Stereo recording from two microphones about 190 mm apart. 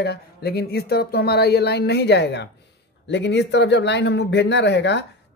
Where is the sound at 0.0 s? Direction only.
60° left (ahead or behind).